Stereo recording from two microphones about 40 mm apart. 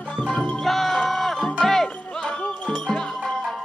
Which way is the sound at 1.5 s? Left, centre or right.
Centre.